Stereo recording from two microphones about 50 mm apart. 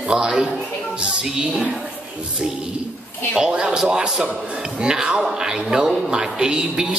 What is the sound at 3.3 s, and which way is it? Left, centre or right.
Speech, centre.